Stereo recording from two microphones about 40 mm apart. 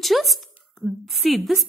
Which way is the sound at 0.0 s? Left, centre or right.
Centre.